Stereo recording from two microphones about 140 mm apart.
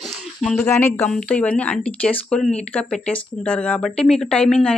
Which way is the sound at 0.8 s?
15° left (ahead or behind).